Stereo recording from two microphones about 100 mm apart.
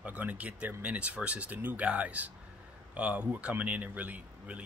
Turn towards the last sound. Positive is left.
turn(degrees=-15)  # may be behind; listen again after turning